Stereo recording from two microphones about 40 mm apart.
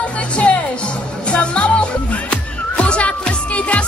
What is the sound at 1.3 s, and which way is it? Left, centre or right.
Music, left.